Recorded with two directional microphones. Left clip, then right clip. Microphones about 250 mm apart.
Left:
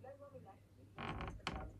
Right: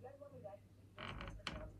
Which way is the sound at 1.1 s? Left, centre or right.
Left.